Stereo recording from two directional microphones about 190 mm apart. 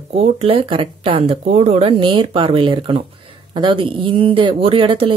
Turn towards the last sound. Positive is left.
turn(degrees=-30)  # may be behind; listen again after turning